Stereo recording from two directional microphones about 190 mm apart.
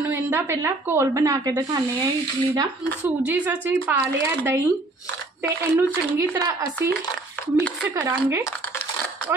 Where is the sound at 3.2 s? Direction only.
10° right (ahead or behind).